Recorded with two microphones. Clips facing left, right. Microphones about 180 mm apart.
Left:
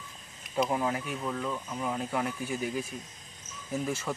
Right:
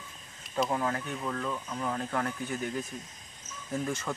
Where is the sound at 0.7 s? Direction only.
15° left (ahead or behind).